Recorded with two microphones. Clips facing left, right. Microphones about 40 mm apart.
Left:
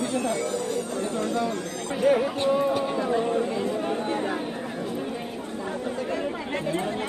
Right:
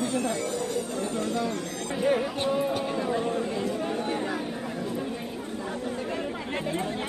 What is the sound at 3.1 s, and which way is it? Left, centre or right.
Chatter, centre.